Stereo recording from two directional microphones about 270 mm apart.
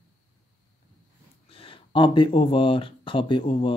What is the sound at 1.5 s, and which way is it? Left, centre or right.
Speech, centre.